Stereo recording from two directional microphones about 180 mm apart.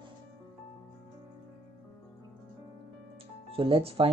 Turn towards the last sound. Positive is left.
turn(degrees=-30)  # may be behind; listen again after turning